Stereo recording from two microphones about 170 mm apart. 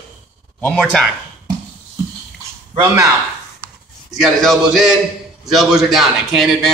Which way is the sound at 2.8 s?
15° right (ahead or behind).